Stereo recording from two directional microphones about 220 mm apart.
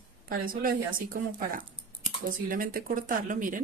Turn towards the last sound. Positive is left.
turn(degrees=-35)  # may be behind; listen again after turning